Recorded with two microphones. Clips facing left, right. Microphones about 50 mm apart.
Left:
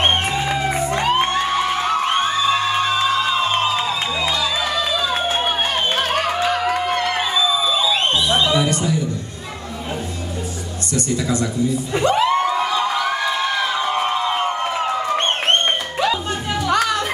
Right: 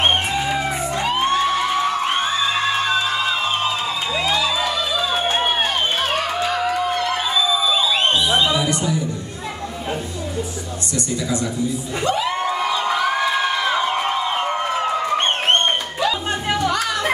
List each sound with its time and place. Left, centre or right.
0.7 s music: left
5.6 s music: left
6.4 s a sound: left
11.0 s a woman's voice: left
16.7 s music: left